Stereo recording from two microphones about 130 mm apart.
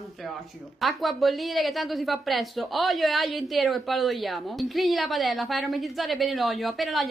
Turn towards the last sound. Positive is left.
turn(degrees=0)  # may be behind; listen again after turning